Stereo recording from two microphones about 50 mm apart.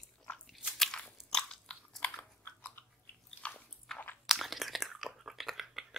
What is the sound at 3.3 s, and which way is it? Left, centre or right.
Biting, left.